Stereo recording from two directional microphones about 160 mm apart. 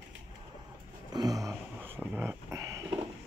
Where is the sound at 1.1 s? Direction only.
20° right (ahead or behind).